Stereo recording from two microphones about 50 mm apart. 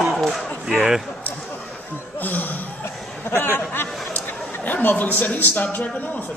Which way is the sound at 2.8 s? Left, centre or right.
Left.